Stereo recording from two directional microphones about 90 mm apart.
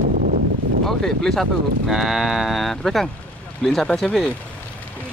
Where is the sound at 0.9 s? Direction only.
5° left (ahead or behind).